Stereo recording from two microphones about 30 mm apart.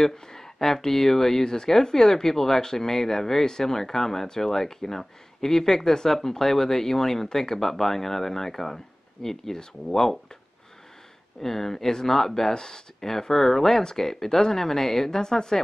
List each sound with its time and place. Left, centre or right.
0.0 s speech: centre
11.4 s speech: centre